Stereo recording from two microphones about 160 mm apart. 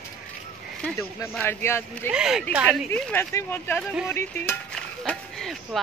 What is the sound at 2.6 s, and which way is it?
Speech, 10° left (ahead or behind).